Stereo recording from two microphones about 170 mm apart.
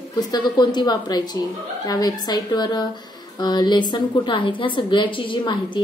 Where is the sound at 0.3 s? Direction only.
25° left (ahead or behind).